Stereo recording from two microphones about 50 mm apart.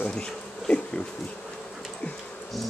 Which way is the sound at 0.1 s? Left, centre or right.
Centre.